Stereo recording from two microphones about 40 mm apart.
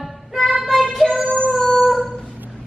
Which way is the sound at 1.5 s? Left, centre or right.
Centre.